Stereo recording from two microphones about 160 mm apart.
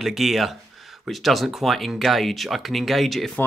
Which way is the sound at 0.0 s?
Centre (ahead or behind).